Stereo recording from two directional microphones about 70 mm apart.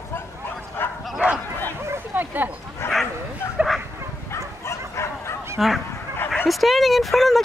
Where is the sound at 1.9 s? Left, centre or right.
Right.